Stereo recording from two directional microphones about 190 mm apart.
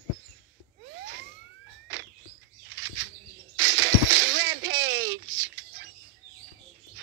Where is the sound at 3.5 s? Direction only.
75° right (ahead or behind).